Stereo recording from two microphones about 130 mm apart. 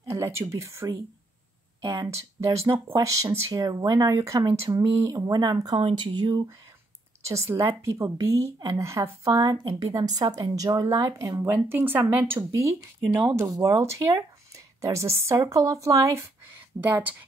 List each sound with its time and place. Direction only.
0.0 s a woman's voice: 20° right (ahead or behind)
5.8 s speech: 45° right (ahead or behind)
6.1 s speech: 35° right (ahead or behind)
7.2 s a woman's voice: 20° right (ahead or behind)
13.4 s a woman's voice: 25° right (ahead or behind)